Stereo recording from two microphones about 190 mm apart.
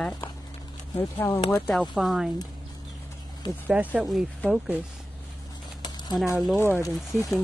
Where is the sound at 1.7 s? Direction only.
Centre (ahead or behind).